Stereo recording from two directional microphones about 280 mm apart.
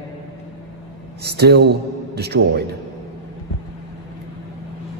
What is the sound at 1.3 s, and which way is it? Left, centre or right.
Speech, right.